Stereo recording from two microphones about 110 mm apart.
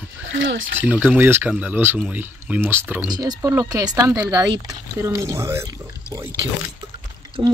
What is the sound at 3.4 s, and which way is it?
Speech, 30° right (ahead or behind).